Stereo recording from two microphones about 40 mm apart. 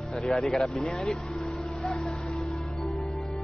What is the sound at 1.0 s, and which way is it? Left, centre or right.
Music, centre.